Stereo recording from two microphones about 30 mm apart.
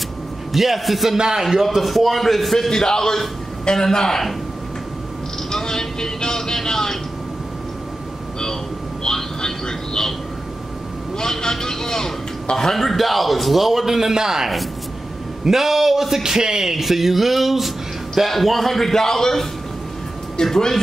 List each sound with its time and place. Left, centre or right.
0.5 s speech: centre
1.1 s music: right
1.4 s speech: centre
2.7 s a man's voice: centre
5.5 s speech: centre
9.0 s television: left
11.1 s speech: centre
12.7 s speech: centre
16.2 s music: right
16.8 s speech: centre
20.4 s a man's voice: centre